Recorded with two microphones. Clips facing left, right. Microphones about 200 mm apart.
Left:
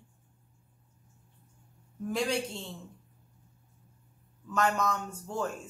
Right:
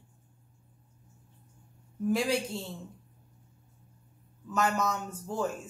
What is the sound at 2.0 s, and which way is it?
Speech, 5° right (ahead or behind).